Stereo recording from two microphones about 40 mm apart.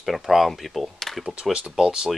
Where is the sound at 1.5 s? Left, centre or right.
Centre.